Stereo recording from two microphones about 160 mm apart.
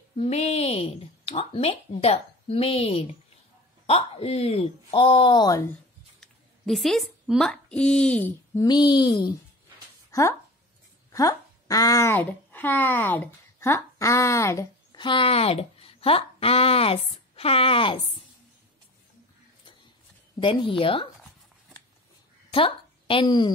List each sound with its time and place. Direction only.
0.1 s speech: 40° left (ahead or behind); by 5.7 s 25° left (ahead or behind)
6.2 s speech: centre (ahead or behind)
8.5 s speech: 25° left (ahead or behind)
15.0 s speech: 30° left (ahead or behind)
20.3 s speech: 30° left (ahead or behind)
22.5 s a woman's voice: 35° left (ahead or behind)